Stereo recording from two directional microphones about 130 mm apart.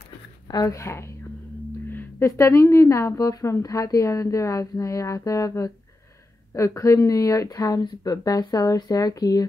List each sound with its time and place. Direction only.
0.5 s speech: 30° left (ahead or behind)